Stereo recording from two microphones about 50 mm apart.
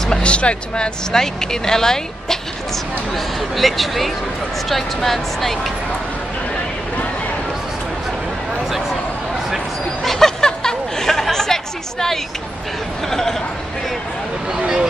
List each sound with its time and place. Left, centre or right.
0.1 s a sound: left
1.1 s speech: centre
3.3 s speech: centre
10.0 s snicker: centre
13.1 s speech: centre
14.6 s speech: centre